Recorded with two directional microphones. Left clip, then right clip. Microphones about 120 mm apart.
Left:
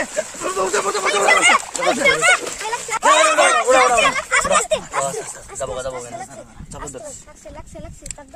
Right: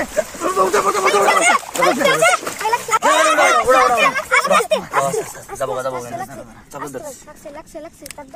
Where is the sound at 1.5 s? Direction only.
15° right (ahead or behind).